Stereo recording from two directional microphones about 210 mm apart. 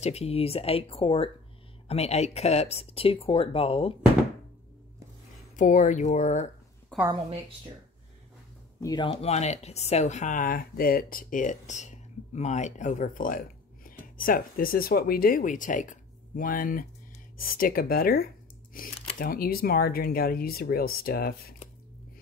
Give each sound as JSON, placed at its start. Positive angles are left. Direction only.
{"t": 0.0, "sound": "speech", "side_deg": 30}
{"t": 5.6, "sound": "speech", "side_deg": 40}
{"t": 6.9, "sound": "a sound", "side_deg": 5}
{"t": 8.8, "sound": "speech", "side_deg": 20}